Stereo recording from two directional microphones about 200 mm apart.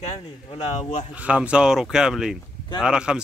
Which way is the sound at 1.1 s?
5° right (ahead or behind).